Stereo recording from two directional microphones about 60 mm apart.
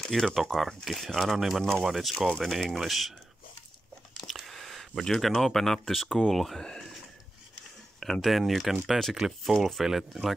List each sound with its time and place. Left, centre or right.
0.0 s speech: centre
4.2 s speech: centre
8.0 s speech: centre